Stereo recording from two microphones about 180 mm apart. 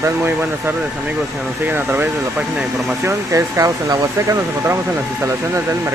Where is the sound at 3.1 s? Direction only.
15° right (ahead or behind).